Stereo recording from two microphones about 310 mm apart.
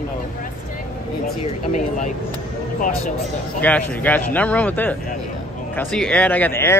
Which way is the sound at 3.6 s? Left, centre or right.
Centre.